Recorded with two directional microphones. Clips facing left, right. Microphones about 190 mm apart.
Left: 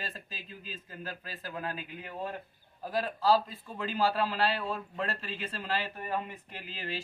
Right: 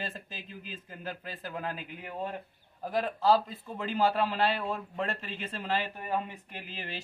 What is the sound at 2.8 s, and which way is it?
A man's voice, 20° right (ahead or behind).